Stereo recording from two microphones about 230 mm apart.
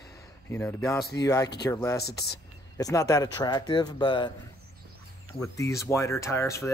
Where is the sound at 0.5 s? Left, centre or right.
Centre.